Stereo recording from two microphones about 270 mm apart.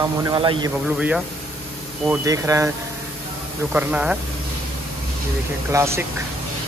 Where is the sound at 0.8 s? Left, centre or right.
Centre.